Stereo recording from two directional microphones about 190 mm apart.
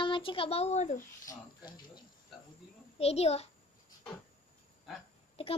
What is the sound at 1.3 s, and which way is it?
Speech, 20° left (ahead or behind).